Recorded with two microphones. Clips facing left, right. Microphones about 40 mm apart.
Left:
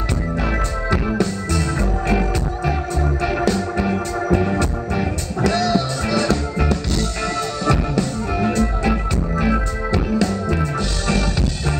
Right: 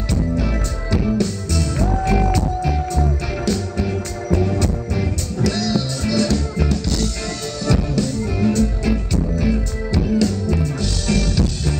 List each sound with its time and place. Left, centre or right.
0.9 s music: left